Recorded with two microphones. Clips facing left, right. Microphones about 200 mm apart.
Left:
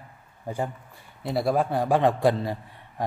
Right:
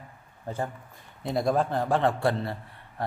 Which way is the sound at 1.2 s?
5° left (ahead or behind).